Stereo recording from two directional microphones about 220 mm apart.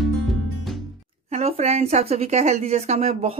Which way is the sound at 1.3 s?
30° right (ahead or behind).